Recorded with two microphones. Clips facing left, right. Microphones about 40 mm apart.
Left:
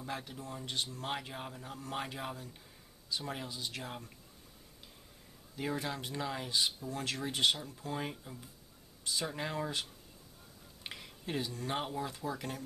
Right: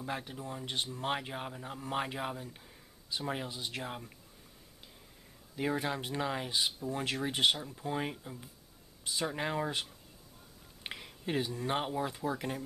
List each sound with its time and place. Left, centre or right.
0.0 s speech: centre
5.6 s speech: centre